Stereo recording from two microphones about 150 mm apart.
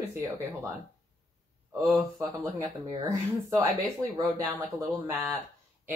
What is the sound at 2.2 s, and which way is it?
Speech, 25° right (ahead or behind).